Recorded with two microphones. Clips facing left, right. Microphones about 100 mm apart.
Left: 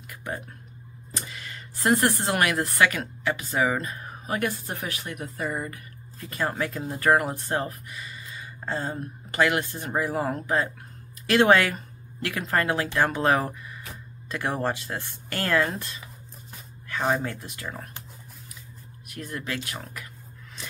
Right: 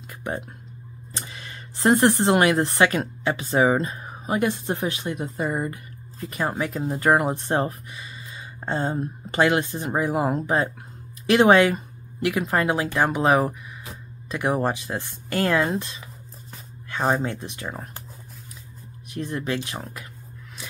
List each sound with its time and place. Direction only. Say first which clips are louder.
1.1 s speech: even; 25° right (ahead or behind)
16.9 s speech: right 2 dB; 35° right (ahead or behind)
17.2 s speech: right 4 dB; 25° right (ahead or behind)
19.0 s speech: right 6 dB; 25° right (ahead or behind)